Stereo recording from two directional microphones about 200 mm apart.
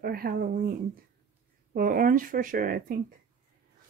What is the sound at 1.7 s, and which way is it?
Speech, 40° right (ahead or behind).